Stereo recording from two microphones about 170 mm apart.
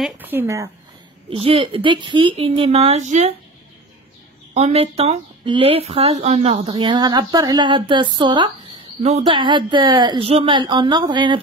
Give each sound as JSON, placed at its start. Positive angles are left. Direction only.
{"t": 0.2, "sound": "speech", "side_deg": -10}
{"t": 1.3, "sound": "a woman's voice", "side_deg": -35}
{"t": 4.6, "sound": "a woman's voice", "side_deg": -35}
{"t": 6.7, "sound": "a woman's voice", "side_deg": -25}